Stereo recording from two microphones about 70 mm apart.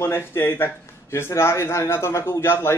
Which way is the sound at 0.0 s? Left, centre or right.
Left.